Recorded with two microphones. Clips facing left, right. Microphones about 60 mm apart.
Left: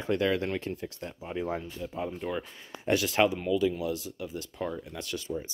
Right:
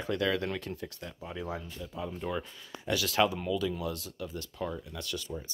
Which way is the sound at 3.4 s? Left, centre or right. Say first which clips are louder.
Left 4 dB; centre.